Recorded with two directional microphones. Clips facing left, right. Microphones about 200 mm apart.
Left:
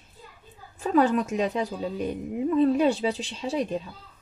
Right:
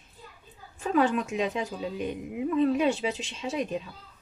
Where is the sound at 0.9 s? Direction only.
40° left (ahead or behind).